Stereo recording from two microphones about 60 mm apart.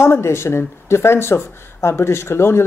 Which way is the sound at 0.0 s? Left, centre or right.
Left.